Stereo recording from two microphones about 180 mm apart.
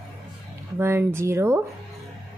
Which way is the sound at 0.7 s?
15° right (ahead or behind).